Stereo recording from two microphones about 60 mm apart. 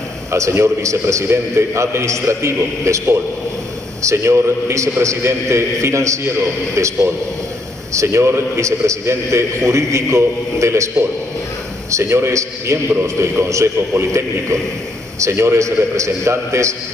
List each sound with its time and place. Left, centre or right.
0.3 s a man's voice: right